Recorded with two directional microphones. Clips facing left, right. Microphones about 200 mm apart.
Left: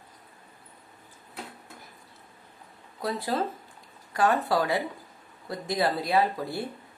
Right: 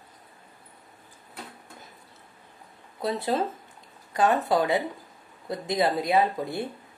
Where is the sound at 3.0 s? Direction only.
20° right (ahead or behind).